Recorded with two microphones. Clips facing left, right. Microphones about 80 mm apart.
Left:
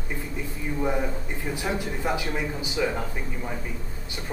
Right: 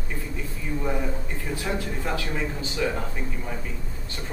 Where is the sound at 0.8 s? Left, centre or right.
Centre.